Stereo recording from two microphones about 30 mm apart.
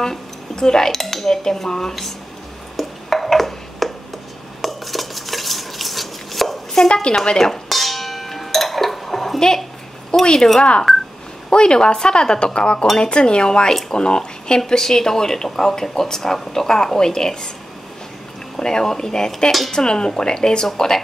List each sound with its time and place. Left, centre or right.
0.0 s speech: left
2.8 s finger snapping: centre
4.6 s dishes: centre
6.9 s speech: left
7.3 s speech: centre
7.7 s a sound: centre
8.5 s dishes: centre
10.2 s speech: left
10.9 s telephone dialing: centre
11.5 s speech: left
14.7 s speech: centre
18.6 s speech: left